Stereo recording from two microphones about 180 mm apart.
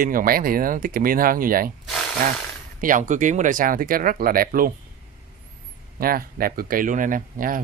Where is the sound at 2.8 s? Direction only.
45° right (ahead or behind).